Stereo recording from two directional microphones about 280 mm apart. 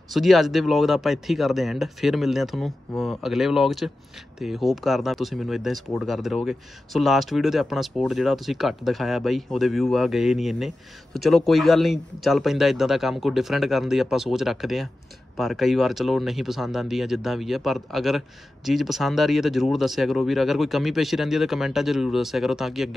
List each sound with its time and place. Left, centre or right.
0.1 s speech: centre